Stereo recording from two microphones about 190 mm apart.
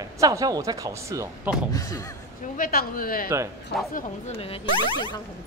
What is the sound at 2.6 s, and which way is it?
Speech, 50° left (ahead or behind).